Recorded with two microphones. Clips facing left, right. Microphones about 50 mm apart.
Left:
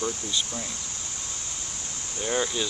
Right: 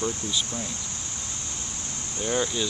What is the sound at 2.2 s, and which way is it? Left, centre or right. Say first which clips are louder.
Speech: right 1 dB; centre.